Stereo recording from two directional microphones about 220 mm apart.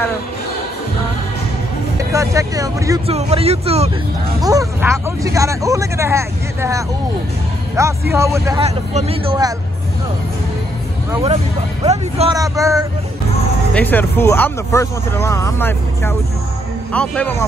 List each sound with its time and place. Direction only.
2.1 s speech: 15° right (ahead or behind)
3.1 s speech: 30° right (ahead or behind)
4.4 s speech: 15° right (ahead or behind)
8.5 s speech: 30° right (ahead or behind)
11.1 s speech: 20° right (ahead or behind)
12.4 s speech: 15° right (ahead or behind)
13.7 s a man's voice: 10° left (ahead or behind)